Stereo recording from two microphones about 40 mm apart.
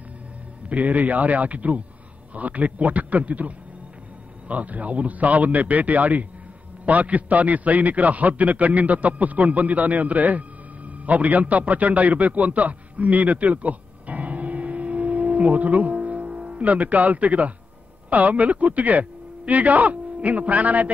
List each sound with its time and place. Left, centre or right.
0.7 s a man's voice: right